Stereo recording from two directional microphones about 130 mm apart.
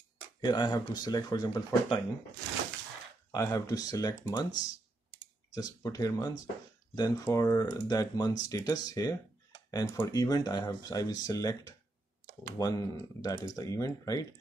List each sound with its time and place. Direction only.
0.4 s speech: 35° left (ahead or behind)
3.3 s speech: 25° left (ahead or behind)